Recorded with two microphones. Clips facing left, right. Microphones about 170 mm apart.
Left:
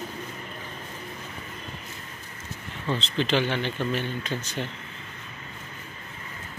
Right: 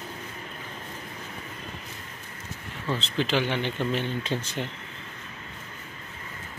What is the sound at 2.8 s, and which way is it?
Speech, 5° right (ahead or behind).